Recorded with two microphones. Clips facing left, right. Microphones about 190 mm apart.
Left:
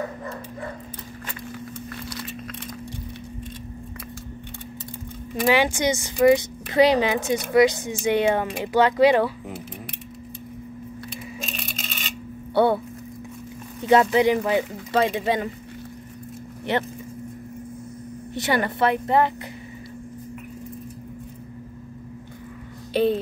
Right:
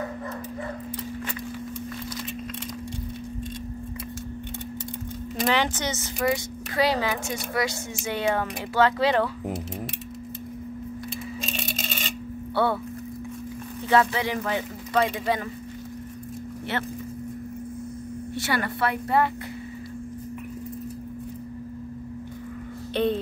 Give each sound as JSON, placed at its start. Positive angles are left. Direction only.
{"t": 5.5, "sound": "speech", "side_deg": 10}
{"t": 6.1, "sound": "speech", "side_deg": 25}
{"t": 12.6, "sound": "speech", "side_deg": 20}
{"t": 13.8, "sound": "speech", "side_deg": 20}
{"t": 14.9, "sound": "speech", "side_deg": 25}
{"t": 16.7, "sound": "speech", "side_deg": 15}
{"t": 18.3, "sound": "speech", "side_deg": 20}